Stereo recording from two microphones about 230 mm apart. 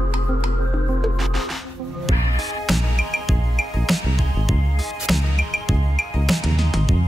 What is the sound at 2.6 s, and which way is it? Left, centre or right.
Music, centre.